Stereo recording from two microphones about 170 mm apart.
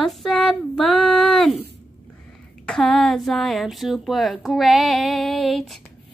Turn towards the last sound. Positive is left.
turn(degrees=0)  # may be behind; listen again after turning